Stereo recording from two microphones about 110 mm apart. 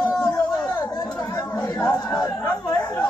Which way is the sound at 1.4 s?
30° left (ahead or behind).